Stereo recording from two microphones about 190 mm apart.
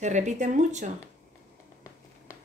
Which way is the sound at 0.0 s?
40° right (ahead or behind).